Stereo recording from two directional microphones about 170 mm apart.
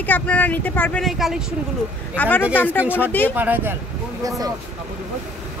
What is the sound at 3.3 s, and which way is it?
Speech, 10° right (ahead or behind).